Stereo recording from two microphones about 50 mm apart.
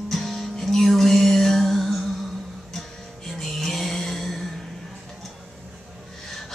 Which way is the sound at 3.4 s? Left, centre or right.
Centre.